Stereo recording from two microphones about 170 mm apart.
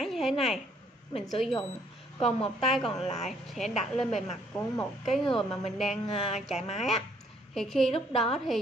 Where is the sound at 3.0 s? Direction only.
40° left (ahead or behind).